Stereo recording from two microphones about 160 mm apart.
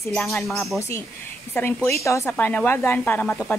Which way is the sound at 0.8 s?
15° left (ahead or behind).